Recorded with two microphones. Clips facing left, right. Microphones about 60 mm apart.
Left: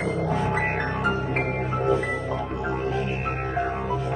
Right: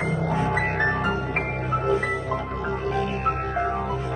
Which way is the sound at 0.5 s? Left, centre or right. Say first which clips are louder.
Even; left.